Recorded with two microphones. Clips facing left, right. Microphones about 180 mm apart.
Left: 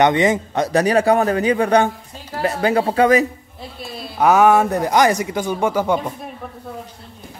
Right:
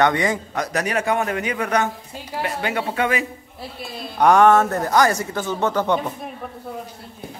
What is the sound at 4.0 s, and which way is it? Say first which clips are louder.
Speech: even; 5° left (ahead or behind).